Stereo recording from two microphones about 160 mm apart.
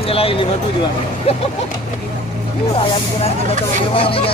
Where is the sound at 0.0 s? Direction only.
35° left (ahead or behind).